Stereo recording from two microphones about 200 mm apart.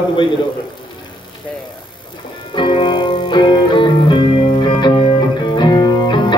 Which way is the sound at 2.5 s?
25° left (ahead or behind).